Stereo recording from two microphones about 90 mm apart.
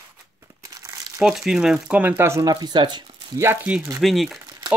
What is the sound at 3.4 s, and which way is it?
Speech, 25° right (ahead or behind).